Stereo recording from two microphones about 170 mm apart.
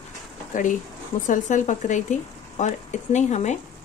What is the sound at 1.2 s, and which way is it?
A woman's voice, 50° left (ahead or behind).